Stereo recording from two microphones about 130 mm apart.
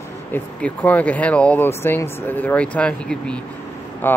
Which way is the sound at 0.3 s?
10° left (ahead or behind).